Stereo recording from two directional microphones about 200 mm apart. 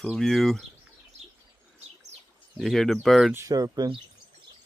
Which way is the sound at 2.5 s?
Centre (ahead or behind).